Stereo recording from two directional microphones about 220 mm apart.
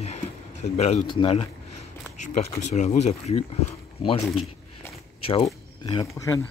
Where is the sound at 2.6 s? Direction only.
30° left (ahead or behind); by 6.1 s 15° left (ahead or behind).